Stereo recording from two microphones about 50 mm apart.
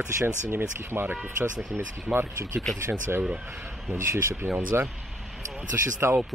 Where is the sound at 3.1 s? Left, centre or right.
Right.